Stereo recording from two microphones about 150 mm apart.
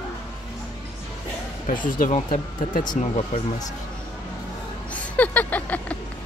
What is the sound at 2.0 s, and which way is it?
Speech, 65° left (ahead or behind).